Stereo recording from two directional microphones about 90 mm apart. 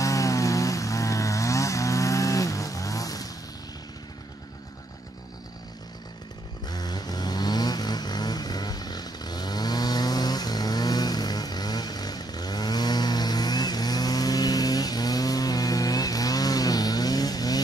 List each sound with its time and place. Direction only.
0.0 s vehicle: 35° left (ahead or behind)
6.7 s vehicle: 50° left (ahead or behind)